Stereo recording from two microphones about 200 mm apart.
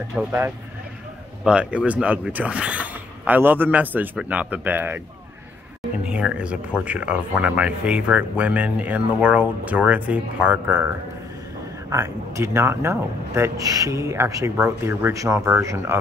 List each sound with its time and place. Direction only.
0.2 s speech: 10° right (ahead or behind)
6.0 s speech: 5° right (ahead or behind)
11.9 s speech: 15° right (ahead or behind)